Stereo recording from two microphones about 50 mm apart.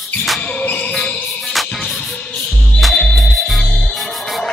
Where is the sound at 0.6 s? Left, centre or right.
Left.